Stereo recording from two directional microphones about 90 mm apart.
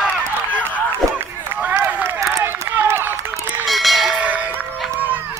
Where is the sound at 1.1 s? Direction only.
20° right (ahead or behind).